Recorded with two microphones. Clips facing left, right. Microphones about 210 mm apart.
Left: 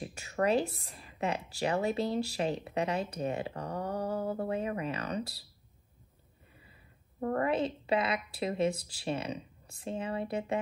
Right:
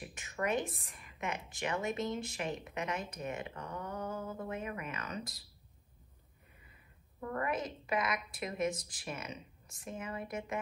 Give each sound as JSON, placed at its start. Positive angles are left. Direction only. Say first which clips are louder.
{"t": 0.0, "sound": "a woman's voice", "louder": "left 7 dB", "side_deg": 35}
{"t": 7.2, "sound": "a woman's voice", "louder": "left 7 dB", "side_deg": 35}